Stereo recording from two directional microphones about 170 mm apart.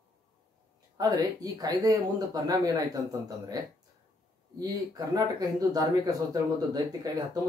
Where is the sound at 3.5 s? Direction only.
20° right (ahead or behind).